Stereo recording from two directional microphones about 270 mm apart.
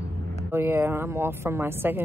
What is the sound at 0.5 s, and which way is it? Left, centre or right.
A woman's voice, centre.